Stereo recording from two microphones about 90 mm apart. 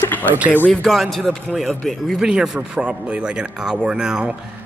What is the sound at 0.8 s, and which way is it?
A man's voice, centre (ahead or behind).